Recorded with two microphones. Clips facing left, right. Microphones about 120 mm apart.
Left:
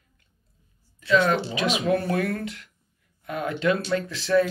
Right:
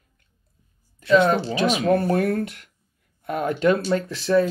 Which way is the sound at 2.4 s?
55° right (ahead or behind).